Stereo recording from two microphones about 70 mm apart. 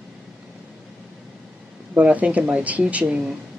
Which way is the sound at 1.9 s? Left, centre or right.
Centre.